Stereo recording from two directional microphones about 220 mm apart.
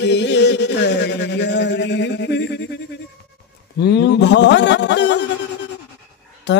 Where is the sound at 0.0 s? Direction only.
50° left (ahead or behind).